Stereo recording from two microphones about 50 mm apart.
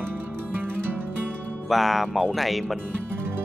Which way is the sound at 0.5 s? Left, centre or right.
Right.